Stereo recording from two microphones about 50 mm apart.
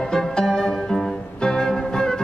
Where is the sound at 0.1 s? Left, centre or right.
Centre.